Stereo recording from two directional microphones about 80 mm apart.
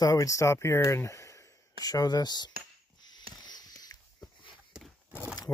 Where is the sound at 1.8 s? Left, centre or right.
Left.